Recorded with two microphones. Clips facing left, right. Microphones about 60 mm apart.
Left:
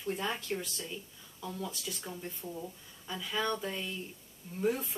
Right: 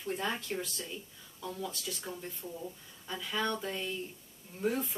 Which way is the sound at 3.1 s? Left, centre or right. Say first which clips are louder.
Even; centre.